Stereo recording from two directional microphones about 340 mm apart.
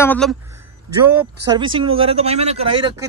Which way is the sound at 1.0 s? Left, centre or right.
Centre.